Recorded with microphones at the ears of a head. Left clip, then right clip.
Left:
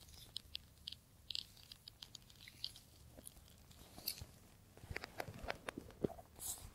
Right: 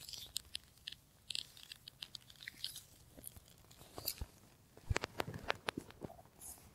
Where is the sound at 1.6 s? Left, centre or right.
Right.